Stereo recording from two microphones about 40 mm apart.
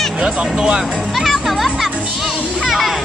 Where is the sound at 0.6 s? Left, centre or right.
Centre.